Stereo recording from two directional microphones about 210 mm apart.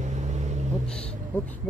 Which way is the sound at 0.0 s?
35° right (ahead or behind).